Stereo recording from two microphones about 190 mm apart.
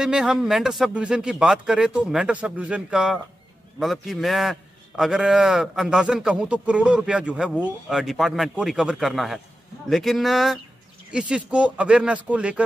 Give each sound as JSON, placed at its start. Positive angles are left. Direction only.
{"t": 0.0, "sound": "a man's voice", "side_deg": -5}